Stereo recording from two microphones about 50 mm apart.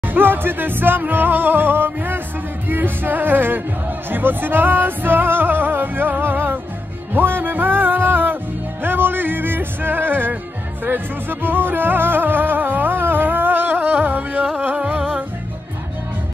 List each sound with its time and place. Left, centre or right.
0.1 s music: right